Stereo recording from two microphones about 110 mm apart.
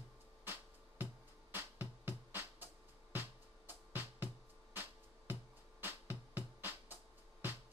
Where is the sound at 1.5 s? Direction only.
20° right (ahead or behind).